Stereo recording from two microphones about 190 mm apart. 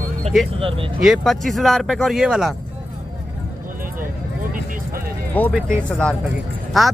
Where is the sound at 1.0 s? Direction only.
Centre (ahead or behind).